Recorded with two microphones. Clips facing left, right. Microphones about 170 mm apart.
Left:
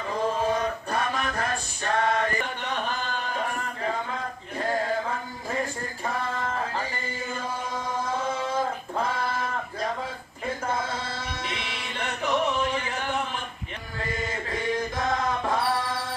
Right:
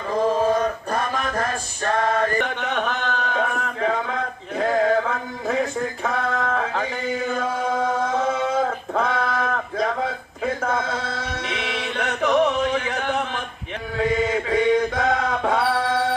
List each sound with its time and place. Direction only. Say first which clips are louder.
0.5 s male singing: right 5 dB; 40° right (ahead or behind)
2.4 s a sound: right 6 dB; 70° right (ahead or behind)
13.9 s mantra: right 11 dB; 85° right